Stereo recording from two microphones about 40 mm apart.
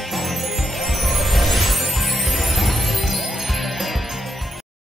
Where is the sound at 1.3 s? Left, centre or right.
Centre.